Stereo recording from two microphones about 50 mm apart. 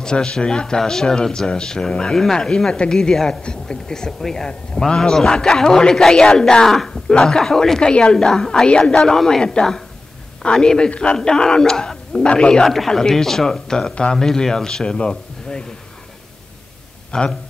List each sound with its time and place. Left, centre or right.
0.0 s a man's voice: centre
4.2 s speech: centre
4.5 s a man's voice: centre
12.2 s speech: left
12.6 s a man's voice: centre
14.1 s a man's voice: centre
17.1 s a man's voice: centre